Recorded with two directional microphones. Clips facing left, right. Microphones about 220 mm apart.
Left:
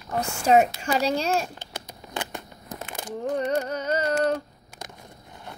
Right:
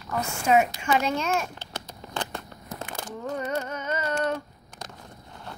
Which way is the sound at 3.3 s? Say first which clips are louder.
Left 5 dB; 35° left (ahead or behind).